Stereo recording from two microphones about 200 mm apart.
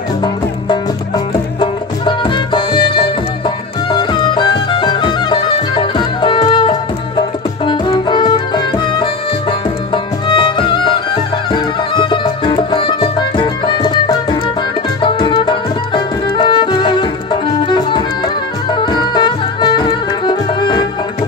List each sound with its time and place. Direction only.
0.2 s music: 20° left (ahead or behind)